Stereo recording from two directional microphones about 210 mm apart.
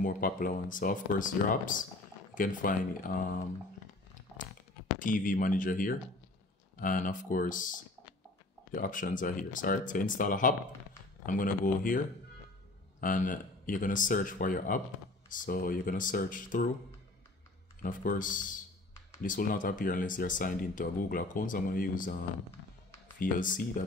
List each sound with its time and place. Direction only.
0.0 s speech: 40° left (ahead or behind)
4.9 s speech: 40° left (ahead or behind)
8.7 s speech: 40° left (ahead or behind)
13.0 s speech: 40° left (ahead or behind)
17.8 s speech: 40° left (ahead or behind)
23.1 s speech: 40° left (ahead or behind)